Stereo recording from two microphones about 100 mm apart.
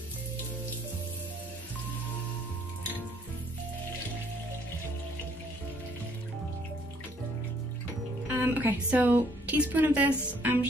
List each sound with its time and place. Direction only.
8.3 s a woman's voice: 20° right (ahead or behind)